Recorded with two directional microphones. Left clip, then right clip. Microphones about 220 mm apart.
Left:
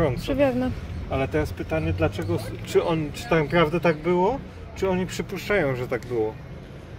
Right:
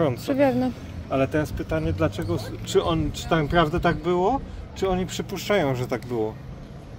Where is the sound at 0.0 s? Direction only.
50° right (ahead or behind).